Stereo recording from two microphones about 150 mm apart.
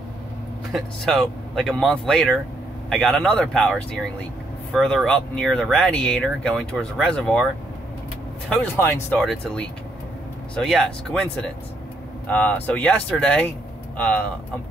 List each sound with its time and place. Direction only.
0.7 s speech: centre (ahead or behind)
8.5 s speech: 10° left (ahead or behind)